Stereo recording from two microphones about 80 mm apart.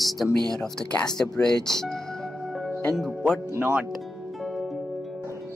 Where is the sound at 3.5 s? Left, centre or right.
Right.